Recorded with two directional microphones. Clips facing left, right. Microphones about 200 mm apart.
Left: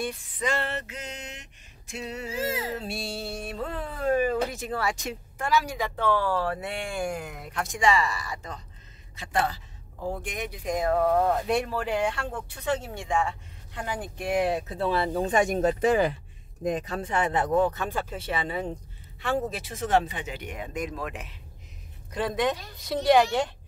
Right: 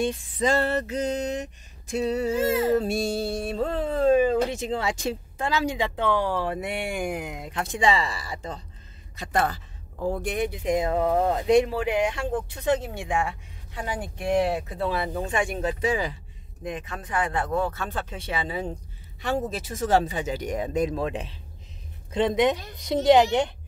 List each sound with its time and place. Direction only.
0.0 s speech: 25° right (ahead or behind)
0.5 s a sound: 40° right (ahead or behind)
2.5 s speech: 50° right (ahead or behind); by 8.6 s 30° right (ahead or behind)
9.1 s speech: 45° right (ahead or behind)
10.2 s speech: 30° right (ahead or behind); by 14.2 s 5° right (ahead or behind)
15.3 s speech: 40° left (ahead or behind)
16.6 s speech: 40° left (ahead or behind); by 18.0 s 15° left (ahead or behind)
18.1 s speech: centre (ahead or behind)
19.7 s a sound: 40° right (ahead or behind)
22.1 s speech: 20° right (ahead or behind)